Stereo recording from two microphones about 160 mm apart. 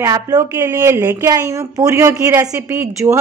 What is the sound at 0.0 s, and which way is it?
A woman's voice, 20° right (ahead or behind).